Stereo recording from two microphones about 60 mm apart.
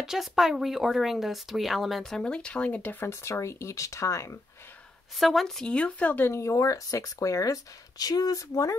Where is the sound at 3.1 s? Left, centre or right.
Left.